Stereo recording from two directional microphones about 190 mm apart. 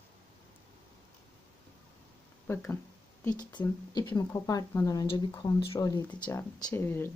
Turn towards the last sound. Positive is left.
turn(degrees=10)  # may be behind; listen again after turning